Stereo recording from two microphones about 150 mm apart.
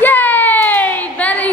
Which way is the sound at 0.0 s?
15° left (ahead or behind).